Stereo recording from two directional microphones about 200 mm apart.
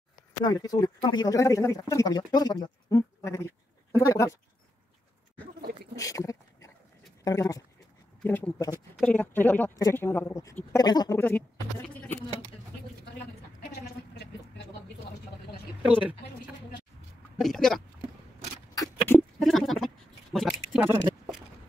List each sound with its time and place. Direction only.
0.5 s speech: 20° left (ahead or behind)
5.9 s a sound: 15° left (ahead or behind)
7.2 s speech: 20° left (ahead or behind)
17.4 s speech: centre (ahead or behind)
18.8 s a sound: 10° left (ahead or behind)
20.3 s speech: centre (ahead or behind)